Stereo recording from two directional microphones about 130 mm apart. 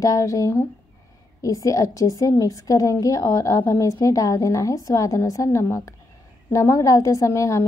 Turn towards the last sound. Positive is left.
turn(degrees=25)  # may be behind; listen again after turning